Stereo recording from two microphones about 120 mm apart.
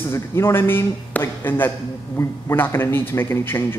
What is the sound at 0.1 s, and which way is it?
A man's voice, 20° left (ahead or behind).